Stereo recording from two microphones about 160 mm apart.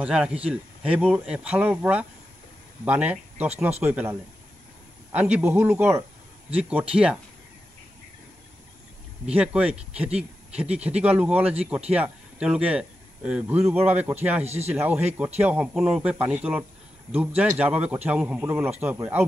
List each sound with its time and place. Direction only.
0.0 s speech: 5° right (ahead or behind)
9.3 s speech: 5° right (ahead or behind)
14.4 s speech: 40° right (ahead or behind)
14.7 s speech: 10° right (ahead or behind)